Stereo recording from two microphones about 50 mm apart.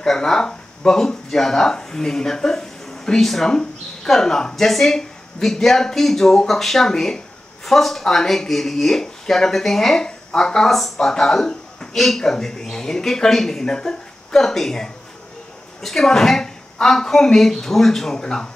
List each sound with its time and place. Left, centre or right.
0.0 s speech: centre